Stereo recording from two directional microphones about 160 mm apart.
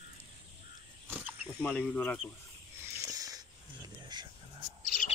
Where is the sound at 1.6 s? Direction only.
5° left (ahead or behind).